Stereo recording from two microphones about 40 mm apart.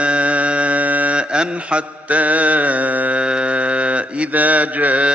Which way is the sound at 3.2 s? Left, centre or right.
Right.